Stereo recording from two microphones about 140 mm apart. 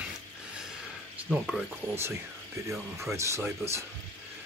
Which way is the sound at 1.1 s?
Centre (ahead or behind).